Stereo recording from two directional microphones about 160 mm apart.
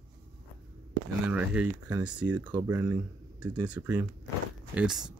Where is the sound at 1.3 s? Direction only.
10° right (ahead or behind).